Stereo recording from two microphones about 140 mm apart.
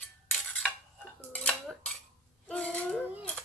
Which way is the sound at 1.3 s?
10° left (ahead or behind).